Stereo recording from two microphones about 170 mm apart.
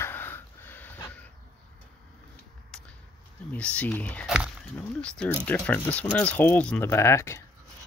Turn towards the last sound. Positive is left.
turn(degrees=15)  # may be behind; listen again after turning